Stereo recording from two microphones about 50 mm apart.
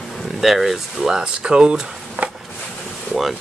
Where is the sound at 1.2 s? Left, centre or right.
Centre.